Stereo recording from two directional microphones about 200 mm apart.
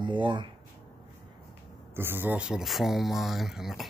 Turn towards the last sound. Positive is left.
turn(degrees=0)  # may be behind; listen again after turning